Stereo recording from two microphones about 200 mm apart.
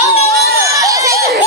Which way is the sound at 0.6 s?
15° right (ahead or behind).